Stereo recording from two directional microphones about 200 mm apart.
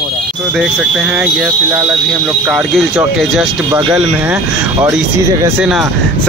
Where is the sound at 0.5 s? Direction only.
Centre (ahead or behind).